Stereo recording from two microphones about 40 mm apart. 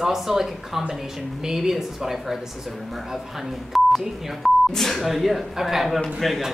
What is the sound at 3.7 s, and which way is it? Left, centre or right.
Speech, centre.